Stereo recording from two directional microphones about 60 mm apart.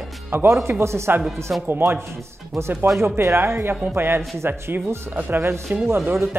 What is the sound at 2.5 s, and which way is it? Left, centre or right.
A man's voice, right.